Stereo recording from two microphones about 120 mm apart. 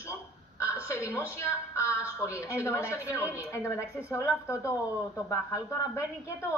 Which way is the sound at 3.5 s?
20° left (ahead or behind).